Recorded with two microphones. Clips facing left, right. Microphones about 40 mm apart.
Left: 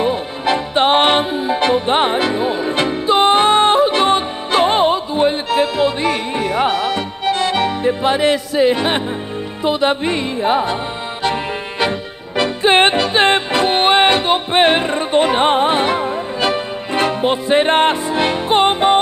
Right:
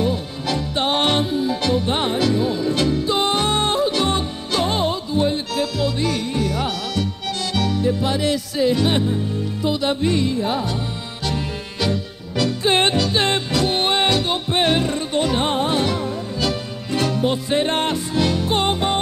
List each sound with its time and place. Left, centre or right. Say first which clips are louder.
0.0 s music: left 5 dB; left